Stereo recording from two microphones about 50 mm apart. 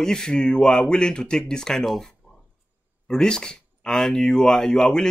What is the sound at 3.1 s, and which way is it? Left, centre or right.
Speech, centre.